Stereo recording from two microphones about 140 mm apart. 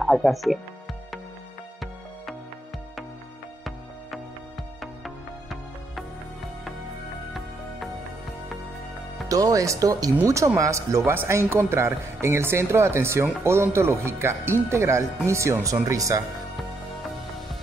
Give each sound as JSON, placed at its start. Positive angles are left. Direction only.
{"t": 0.0, "sound": "speech", "side_deg": 0}
{"t": 5.0, "sound": "music", "side_deg": 0}
{"t": 9.3, "sound": "speech", "side_deg": -25}